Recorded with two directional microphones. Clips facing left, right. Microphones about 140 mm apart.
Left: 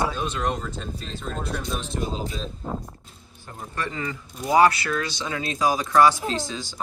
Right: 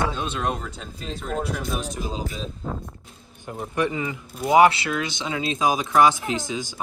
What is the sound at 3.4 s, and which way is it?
Speech, 15° right (ahead or behind).